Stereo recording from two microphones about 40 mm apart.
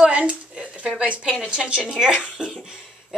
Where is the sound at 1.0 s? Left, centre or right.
Right.